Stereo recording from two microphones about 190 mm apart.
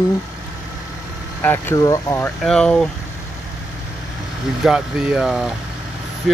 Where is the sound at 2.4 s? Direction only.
5° left (ahead or behind).